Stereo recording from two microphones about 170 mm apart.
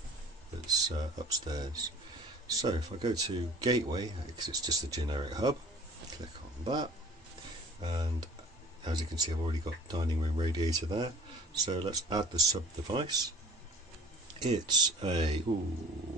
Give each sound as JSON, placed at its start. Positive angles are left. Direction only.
{"t": 0.7, "sound": "a man's voice", "side_deg": -20}
{"t": 6.6, "sound": "a man's voice", "side_deg": -25}
{"t": 14.4, "sound": "a man's voice", "side_deg": -25}